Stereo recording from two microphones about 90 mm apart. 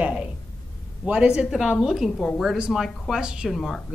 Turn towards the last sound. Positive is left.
turn(degrees=0)  # may be behind; listen again after turning